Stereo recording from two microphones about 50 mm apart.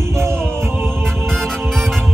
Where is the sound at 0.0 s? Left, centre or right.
Right.